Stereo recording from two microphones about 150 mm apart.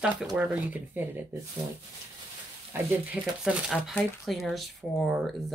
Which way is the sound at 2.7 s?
5° right (ahead or behind).